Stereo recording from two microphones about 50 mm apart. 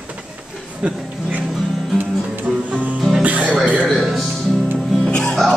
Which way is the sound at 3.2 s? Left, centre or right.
Right.